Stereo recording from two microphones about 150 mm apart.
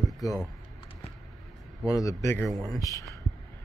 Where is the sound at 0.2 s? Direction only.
25° left (ahead or behind).